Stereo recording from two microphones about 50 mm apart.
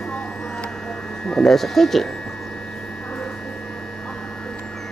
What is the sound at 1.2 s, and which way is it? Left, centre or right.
Speech, centre.